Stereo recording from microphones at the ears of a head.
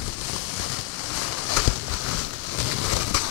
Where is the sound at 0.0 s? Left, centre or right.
Left.